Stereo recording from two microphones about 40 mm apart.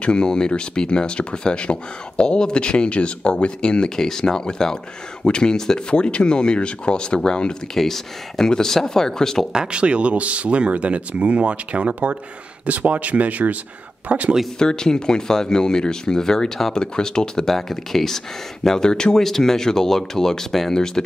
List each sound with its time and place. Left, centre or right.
0.0 s speech: left
7.7 s speech: centre
8.5 s speech: centre
9.5 s speech: right
14.6 s speech: centre
17.6 s speech: centre
18.8 s speech: centre